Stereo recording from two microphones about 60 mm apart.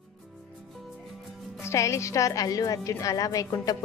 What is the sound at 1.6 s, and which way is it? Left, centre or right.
A woman's voice, left.